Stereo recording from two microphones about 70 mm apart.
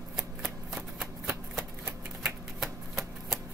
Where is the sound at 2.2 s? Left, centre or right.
Centre.